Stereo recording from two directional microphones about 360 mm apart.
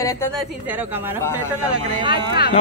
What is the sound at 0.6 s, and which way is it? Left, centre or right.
Speech, centre.